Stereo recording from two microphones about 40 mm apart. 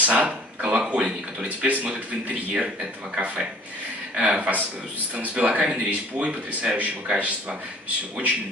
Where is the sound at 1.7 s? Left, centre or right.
Right.